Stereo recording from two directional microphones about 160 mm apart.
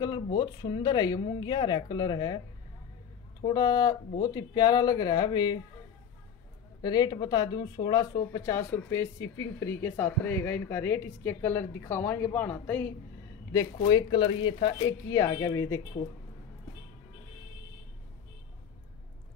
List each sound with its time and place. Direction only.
0.0 s speech: 25° left (ahead or behind)
3.4 s speech: 25° left (ahead or behind)
6.8 s speech: 25° left (ahead or behind)
13.5 s speech: 25° left (ahead or behind)